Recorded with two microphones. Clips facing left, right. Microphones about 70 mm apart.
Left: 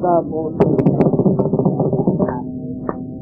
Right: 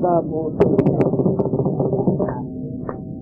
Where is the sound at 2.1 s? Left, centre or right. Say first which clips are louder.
Left 3 dB; left.